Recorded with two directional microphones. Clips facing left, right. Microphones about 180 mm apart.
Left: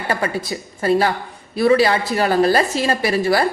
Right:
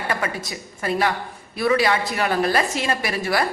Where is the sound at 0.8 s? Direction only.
30° left (ahead or behind).